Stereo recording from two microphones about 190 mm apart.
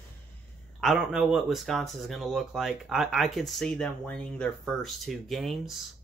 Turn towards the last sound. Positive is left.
turn(degrees=0)  # may be behind; listen again after turning